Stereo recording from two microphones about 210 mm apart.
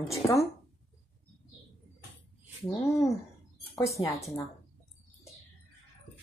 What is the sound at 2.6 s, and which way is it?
Speech, 15° left (ahead or behind).